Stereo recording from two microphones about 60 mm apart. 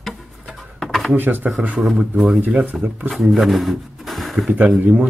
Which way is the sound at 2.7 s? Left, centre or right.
Centre.